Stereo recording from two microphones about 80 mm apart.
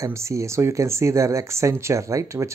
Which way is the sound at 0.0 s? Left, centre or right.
Right.